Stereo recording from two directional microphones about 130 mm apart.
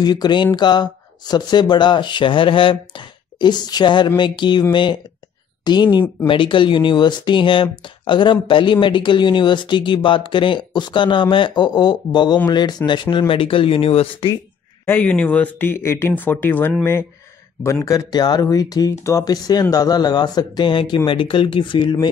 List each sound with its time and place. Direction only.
0.0 s speech: 30° left (ahead or behind)
5.9 s speech: 40° left (ahead or behind)
14.9 s speech: 10° left (ahead or behind)
17.8 s speech: 30° left (ahead or behind)